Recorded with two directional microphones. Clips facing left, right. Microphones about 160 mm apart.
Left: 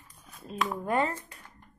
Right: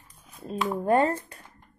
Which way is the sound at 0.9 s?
40° right (ahead or behind).